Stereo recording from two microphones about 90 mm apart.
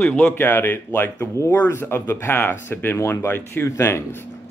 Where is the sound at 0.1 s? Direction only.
15° left (ahead or behind).